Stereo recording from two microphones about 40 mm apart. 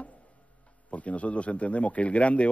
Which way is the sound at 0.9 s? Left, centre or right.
Left.